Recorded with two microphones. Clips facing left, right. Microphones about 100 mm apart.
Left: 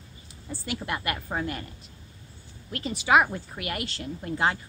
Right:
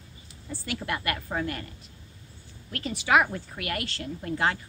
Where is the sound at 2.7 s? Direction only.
20° left (ahead or behind).